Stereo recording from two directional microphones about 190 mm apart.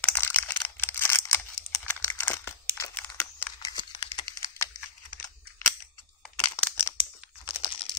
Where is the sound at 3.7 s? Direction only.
25° left (ahead or behind).